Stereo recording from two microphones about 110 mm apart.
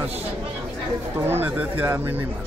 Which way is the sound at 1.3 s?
15° right (ahead or behind).